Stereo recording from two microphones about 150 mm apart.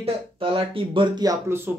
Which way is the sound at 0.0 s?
35° right (ahead or behind).